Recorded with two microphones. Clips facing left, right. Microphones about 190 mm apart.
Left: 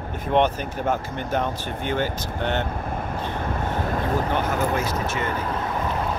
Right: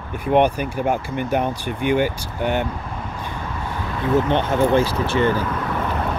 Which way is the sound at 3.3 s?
50° left (ahead or behind).